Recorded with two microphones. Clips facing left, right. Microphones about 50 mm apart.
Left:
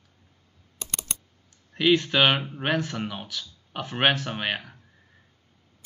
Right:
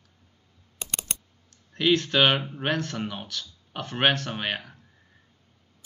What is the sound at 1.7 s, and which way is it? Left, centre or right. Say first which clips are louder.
Speech: left 1 dB; centre.